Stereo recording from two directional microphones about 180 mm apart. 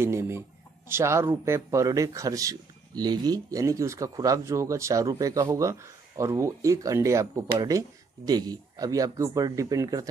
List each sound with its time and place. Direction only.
0.0 s speech: 15° right (ahead or behind)